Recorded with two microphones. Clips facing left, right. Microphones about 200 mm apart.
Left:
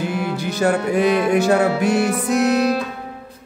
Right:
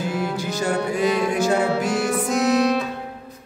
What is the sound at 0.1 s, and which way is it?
Music, 65° left (ahead or behind).